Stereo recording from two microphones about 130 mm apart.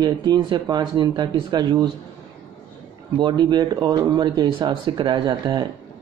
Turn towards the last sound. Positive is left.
turn(degrees=-35)  # may be behind; listen again after turning